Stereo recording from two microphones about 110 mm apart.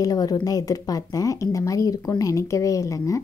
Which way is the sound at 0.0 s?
35° left (ahead or behind).